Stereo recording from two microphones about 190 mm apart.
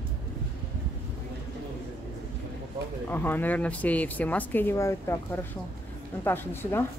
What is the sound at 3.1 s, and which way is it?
Speech, 10° left (ahead or behind).